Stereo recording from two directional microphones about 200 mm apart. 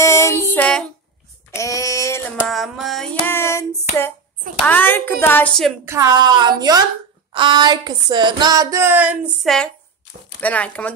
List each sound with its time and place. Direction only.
0.0 s music: 15° left (ahead or behind)
1.5 s a sound: 15° left (ahead or behind)
2.4 s a sound: centre (ahead or behind)
3.3 s hands: 10° left (ahead or behind)
4.6 s a woman's voice: 10° left (ahead or behind)
5.9 s a woman's voice: 20° right (ahead or behind); by 10.9 s 5° left (ahead or behind)